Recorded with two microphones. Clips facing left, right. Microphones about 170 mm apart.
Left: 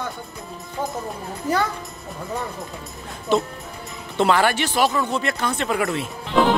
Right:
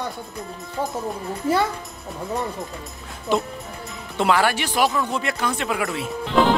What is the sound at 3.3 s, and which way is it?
Speech, 10° right (ahead or behind).